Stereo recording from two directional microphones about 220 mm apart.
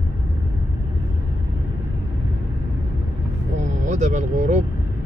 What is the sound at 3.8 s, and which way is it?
Vehicle, 35° right (ahead or behind).